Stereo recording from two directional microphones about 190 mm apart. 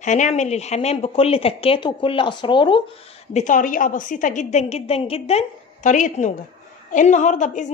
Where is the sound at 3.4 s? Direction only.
40° left (ahead or behind).